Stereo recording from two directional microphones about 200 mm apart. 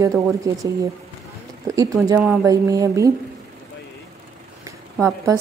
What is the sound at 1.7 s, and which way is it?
Speech, 15° right (ahead or behind).